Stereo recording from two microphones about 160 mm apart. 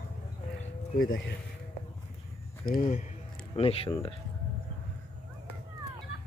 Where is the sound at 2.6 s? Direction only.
60° left (ahead or behind).